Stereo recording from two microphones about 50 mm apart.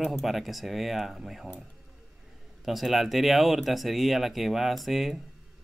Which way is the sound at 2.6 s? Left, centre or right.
Centre.